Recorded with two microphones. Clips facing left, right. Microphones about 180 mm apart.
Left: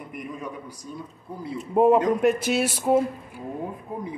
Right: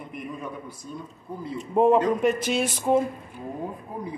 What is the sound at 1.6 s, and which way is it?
Speech, 5° left (ahead or behind).